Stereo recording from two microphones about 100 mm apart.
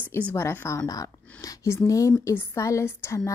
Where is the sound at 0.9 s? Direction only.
35° left (ahead or behind).